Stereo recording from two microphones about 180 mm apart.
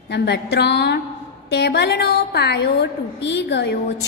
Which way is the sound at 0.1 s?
70° left (ahead or behind).